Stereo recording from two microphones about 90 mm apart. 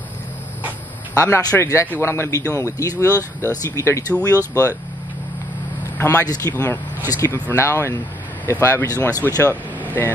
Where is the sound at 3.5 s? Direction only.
40° left (ahead or behind).